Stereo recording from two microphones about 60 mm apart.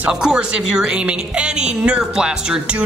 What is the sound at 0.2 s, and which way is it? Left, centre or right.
A woman's voice, centre.